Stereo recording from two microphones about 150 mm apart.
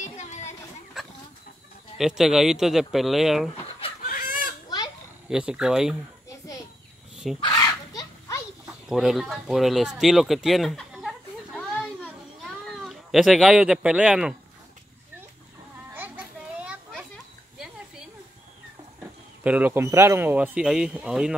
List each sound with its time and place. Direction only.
0.0 s a sound: 50° left (ahead or behind)
2.0 s speech: centre (ahead or behind)
4.0 s chicken: 70° left (ahead or behind)
5.3 s speech: 5° right (ahead or behind)
7.3 s fowl: 25° left (ahead or behind)
8.8 s a sound: centre (ahead or behind)
15.9 s children playing: 10° right (ahead or behind)
19.4 s speech: 10° right (ahead or behind)